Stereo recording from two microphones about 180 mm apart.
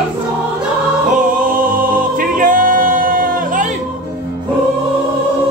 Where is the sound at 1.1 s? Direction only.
50° right (ahead or behind).